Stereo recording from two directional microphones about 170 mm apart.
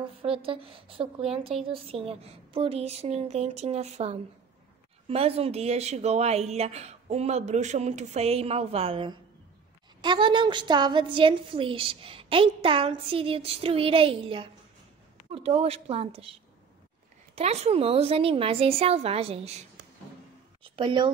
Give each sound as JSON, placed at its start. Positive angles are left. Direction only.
{"t": 0.2, "sound": "a woman's voice", "side_deg": -30}
{"t": 1.4, "sound": "a woman's voice", "side_deg": 0}
{"t": 1.7, "sound": "a woman's voice", "side_deg": -35}
{"t": 17.4, "sound": "a woman's voice", "side_deg": -40}
{"t": 20.6, "sound": "a sound", "side_deg": -30}